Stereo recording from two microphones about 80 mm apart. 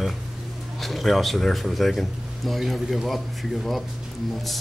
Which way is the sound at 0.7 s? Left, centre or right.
Centre.